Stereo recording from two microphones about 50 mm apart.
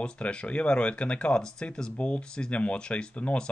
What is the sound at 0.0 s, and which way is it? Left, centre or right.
Speech, centre.